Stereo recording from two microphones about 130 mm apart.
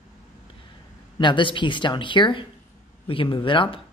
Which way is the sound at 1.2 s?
40° left (ahead or behind).